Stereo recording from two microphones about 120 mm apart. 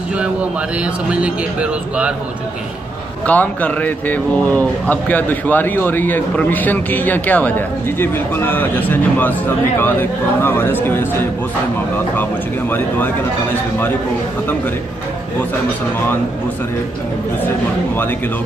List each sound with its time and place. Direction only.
1.1 s speech: 10° right (ahead or behind)
3.3 s speech: 15° left (ahead or behind)
12.2 s speech: 15° left (ahead or behind)